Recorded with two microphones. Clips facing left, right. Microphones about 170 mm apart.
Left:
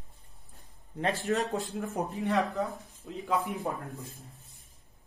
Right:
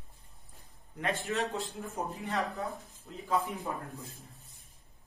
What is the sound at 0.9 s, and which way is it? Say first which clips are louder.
Speech: left 4 dB; 35° left (ahead or behind).